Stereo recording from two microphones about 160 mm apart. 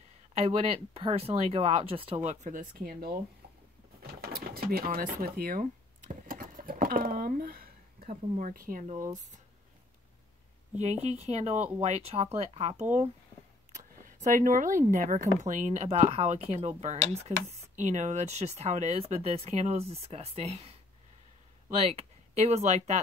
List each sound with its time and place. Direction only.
0.3 s speech: 40° right (ahead or behind)
2.2 s speech: 55° right (ahead or behind)
6.2 s a sound: 60° right (ahead or behind)
8.1 s speech: 55° right (ahead or behind)
10.8 s speech: 45° right (ahead or behind)
14.0 s speech: 55° right (ahead or behind)
21.9 s speech: 45° right (ahead or behind)